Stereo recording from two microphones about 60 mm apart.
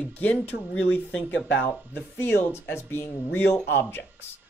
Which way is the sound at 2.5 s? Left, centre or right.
Left.